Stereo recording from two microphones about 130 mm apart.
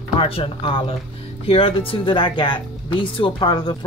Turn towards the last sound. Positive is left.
turn(degrees=40)  # may be behind; listen again after turning